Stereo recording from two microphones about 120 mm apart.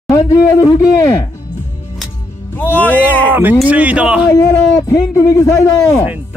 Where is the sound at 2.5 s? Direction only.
15° left (ahead or behind).